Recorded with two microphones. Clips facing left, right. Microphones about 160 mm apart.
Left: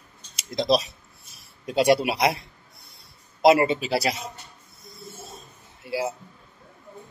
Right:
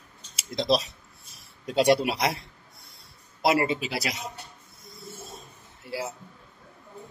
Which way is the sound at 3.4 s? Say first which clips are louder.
Left 6 dB; 25° left (ahead or behind).